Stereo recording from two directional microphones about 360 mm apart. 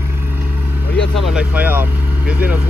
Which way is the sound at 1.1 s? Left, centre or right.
Centre.